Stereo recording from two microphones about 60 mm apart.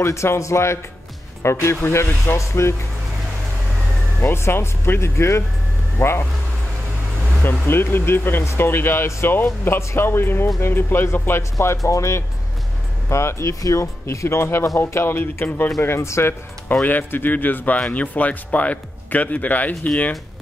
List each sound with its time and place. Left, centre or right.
0.0 s speech: left
4.2 s speech: left
7.4 s speech: left
11.5 s speech: left
13.6 s speech: left
14.0 s speech: left
15.8 s speech: left
16.8 s speech: left